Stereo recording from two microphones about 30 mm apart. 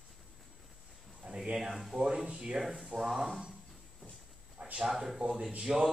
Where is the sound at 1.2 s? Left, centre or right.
Right.